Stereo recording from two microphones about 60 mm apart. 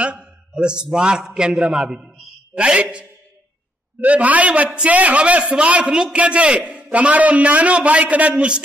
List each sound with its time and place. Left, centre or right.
0.0 s a man's voice: centre